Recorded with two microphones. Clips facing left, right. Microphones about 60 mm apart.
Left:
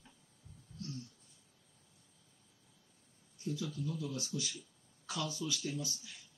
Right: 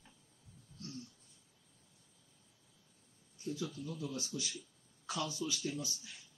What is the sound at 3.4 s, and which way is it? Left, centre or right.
Speech, right.